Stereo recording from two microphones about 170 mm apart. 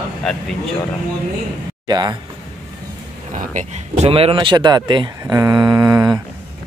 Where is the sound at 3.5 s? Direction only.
40° right (ahead or behind); by 6.1 s 20° right (ahead or behind).